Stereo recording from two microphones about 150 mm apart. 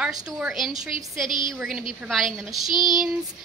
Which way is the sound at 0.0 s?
5° right (ahead or behind).